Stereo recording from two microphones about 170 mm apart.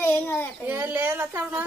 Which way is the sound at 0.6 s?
10° right (ahead or behind).